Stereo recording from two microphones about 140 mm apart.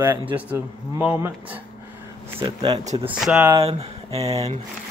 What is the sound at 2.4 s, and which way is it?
Speech, 25° right (ahead or behind).